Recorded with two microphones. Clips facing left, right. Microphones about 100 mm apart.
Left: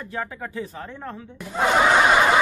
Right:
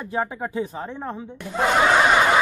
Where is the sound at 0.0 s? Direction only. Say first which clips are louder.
Right 5 dB; 20° right (ahead or behind).